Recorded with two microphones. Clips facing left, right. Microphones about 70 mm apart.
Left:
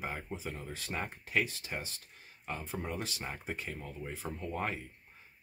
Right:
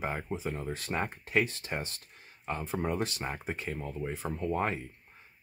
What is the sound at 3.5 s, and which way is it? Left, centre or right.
Speech, right.